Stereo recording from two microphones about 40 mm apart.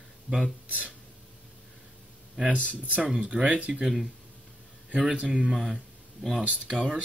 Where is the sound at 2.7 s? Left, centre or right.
Right.